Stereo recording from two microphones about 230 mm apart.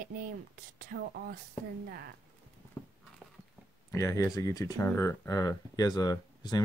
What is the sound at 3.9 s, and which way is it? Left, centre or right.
Speech, centre.